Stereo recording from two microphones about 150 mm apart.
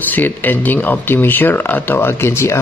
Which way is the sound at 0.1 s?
10° left (ahead or behind).